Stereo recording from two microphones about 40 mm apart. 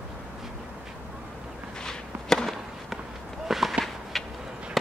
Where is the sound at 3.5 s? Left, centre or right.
Centre.